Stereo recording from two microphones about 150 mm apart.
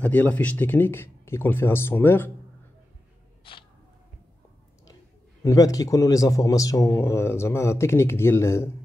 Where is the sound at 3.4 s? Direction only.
35° left (ahead or behind).